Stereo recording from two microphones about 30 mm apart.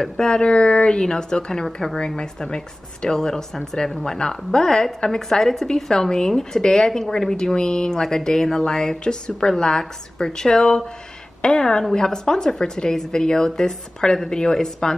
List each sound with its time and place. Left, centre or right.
0.0 s speech: left
0.4 s speech: left